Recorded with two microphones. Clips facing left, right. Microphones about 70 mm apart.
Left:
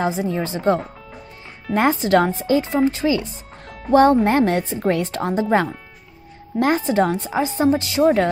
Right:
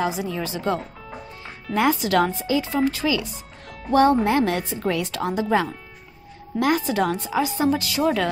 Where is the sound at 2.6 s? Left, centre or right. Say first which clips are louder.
Left 3 dB; left.